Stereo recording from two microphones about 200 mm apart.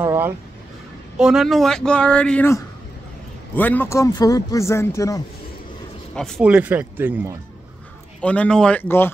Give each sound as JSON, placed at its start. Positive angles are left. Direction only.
{"t": 0.0, "sound": "a sound", "side_deg": -15}
{"t": 1.1, "sound": "speech", "side_deg": 0}
{"t": 6.1, "sound": "speech", "side_deg": 5}
{"t": 8.2, "sound": "speech", "side_deg": 5}